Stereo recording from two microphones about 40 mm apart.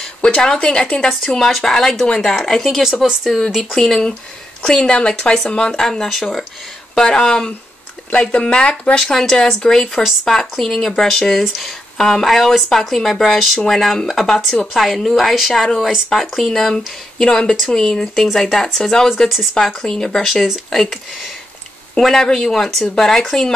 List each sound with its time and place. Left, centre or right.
0.2 s speech: centre
1.5 s speech: centre
2.8 s speech: centre
3.3 s speech: centre; by 5.8 s left
5.8 s speech: centre
8.9 s speech: centre